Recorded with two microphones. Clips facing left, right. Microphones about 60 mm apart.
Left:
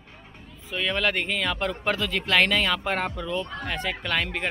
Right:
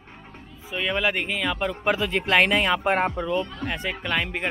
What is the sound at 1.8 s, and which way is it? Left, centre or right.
Speech, right.